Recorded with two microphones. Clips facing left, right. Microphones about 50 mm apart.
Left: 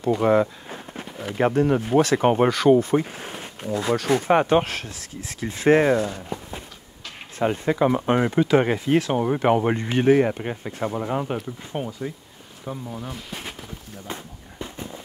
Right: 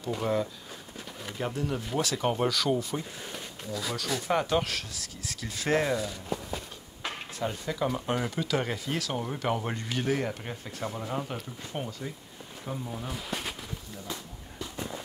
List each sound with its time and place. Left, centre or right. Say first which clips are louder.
0.2 s speech: left 9 dB; left
6.2 s a sound: left 1 dB; centre
7.3 s speech: left 11 dB; left
11.3 s speech: left 7 dB; centre
13.1 s speech: even; centre
14.0 s dog: left 4 dB; left